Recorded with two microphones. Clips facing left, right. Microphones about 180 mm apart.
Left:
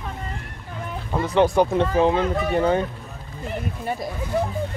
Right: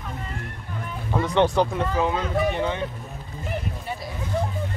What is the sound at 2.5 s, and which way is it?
Speech, 40° left (ahead or behind).